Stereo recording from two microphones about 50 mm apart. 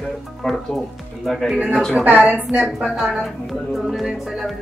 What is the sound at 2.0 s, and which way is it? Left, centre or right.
Speech, right.